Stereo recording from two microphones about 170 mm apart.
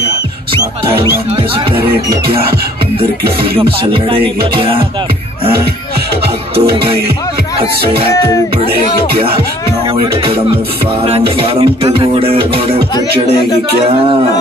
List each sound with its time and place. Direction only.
3.9 s music: 30° right (ahead or behind)
6.5 s music: 70° right (ahead or behind)
10.2 s music: 35° right (ahead or behind)